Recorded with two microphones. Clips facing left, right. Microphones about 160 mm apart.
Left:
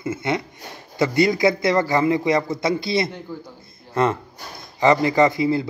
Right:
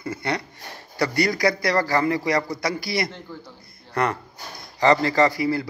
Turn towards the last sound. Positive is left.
turn(degrees=20)  # may be behind; listen again after turning